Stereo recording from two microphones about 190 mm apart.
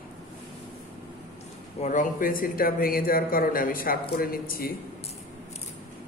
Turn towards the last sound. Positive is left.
turn(degrees=50)  # may be behind; listen again after turning